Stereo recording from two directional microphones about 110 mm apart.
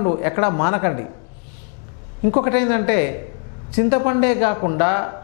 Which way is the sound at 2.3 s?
15° left (ahead or behind).